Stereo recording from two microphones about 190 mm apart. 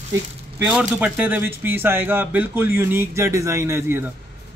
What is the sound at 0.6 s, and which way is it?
A man's voice, 5° right (ahead or behind).